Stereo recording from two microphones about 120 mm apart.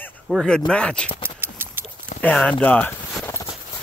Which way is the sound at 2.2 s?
10° left (ahead or behind).